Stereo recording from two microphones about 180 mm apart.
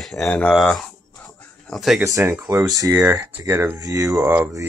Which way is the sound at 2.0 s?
15° right (ahead or behind).